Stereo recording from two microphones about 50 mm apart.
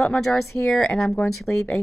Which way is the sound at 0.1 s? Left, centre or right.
Centre.